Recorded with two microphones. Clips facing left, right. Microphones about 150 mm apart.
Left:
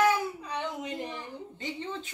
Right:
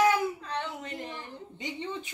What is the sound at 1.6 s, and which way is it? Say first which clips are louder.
Speech: right 1 dB; 15° right (ahead or behind).